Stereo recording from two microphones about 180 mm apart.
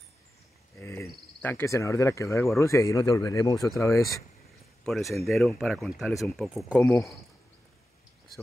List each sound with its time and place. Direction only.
0.7 s a sound: 15° left (ahead or behind)
1.4 s speech: 10° left (ahead or behind)
4.8 s speech: centre (ahead or behind)
6.8 s speech: 15° left (ahead or behind)